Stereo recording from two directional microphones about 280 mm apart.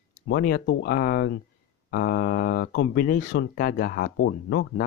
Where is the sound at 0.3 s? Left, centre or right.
Left.